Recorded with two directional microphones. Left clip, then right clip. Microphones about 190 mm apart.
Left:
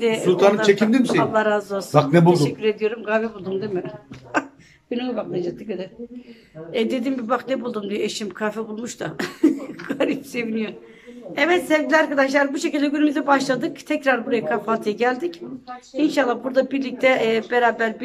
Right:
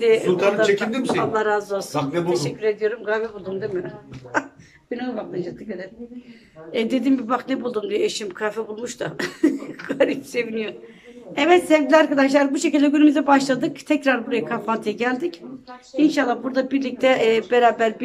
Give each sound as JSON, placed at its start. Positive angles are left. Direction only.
{"t": 0.0, "sound": "speech", "side_deg": 0}
{"t": 0.7, "sound": "speech", "side_deg": 30}
{"t": 1.3, "sound": "a man's voice", "side_deg": 5}